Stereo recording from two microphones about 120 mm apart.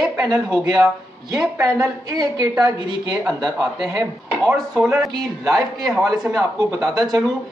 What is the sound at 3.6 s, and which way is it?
Speech, centre (ahead or behind).